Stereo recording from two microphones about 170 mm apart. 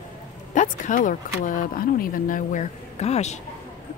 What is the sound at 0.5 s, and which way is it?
Speech, 50° left (ahead or behind).